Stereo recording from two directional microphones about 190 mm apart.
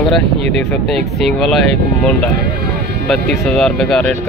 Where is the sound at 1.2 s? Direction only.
Centre (ahead or behind).